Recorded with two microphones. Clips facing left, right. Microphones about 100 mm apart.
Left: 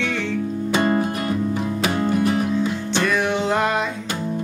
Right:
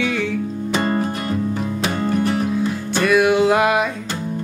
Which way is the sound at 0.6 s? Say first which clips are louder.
Left 1 dB; 10° left (ahead or behind).